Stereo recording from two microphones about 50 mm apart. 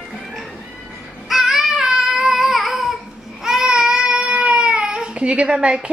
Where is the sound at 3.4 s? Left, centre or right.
Centre.